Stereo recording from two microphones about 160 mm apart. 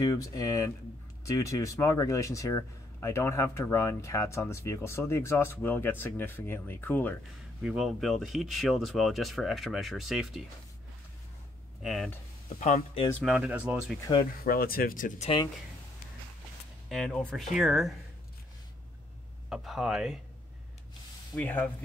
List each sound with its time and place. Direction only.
0.0 s speech: 20° left (ahead or behind)
7.6 s speech: 5° right (ahead or behind)
11.8 s speech: centre (ahead or behind)
12.5 s speech: 50° left (ahead or behind)
13.1 s speech: centre (ahead or behind)
14.4 s speech: 65° left (ahead or behind)
16.9 s speech: 5° left (ahead or behind)
19.5 s speech: centre (ahead or behind)
21.4 s speech: 10° left (ahead or behind)